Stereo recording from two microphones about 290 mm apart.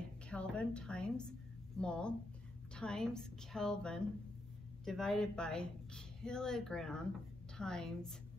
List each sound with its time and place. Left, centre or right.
0.3 s speech: centre